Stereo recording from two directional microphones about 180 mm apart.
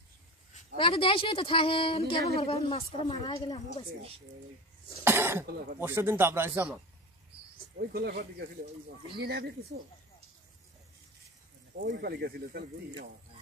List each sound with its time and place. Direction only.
0.7 s speech: 30° left (ahead or behind)
5.0 s speech: 15° right (ahead or behind)
7.7 s speech: 60° right (ahead or behind)
11.8 s speech: 70° right (ahead or behind)